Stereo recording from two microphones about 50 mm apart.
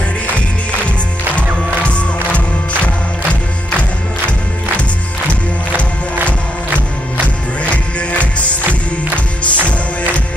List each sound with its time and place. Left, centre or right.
1.3 s music: left
8.2 s music: right